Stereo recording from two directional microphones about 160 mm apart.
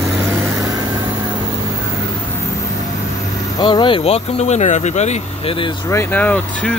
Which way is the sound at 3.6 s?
30° left (ahead or behind).